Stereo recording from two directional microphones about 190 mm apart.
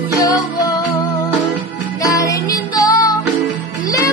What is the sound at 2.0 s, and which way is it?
Music, 15° left (ahead or behind).